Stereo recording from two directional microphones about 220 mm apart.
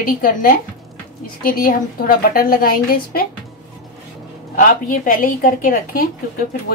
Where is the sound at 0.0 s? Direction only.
40° left (ahead or behind).